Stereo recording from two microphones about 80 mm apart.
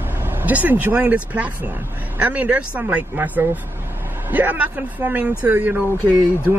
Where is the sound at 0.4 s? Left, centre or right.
Right.